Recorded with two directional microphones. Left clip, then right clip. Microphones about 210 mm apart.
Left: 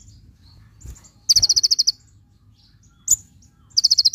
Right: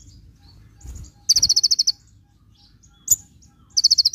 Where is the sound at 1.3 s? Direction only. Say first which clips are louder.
Left 1 dB; 15° left (ahead or behind).